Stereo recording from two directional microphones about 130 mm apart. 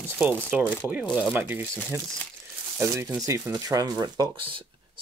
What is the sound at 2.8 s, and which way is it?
Speech, 20° right (ahead or behind).